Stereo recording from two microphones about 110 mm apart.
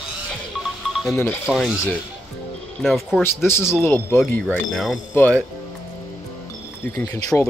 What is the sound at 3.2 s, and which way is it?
Speech, 20° left (ahead or behind).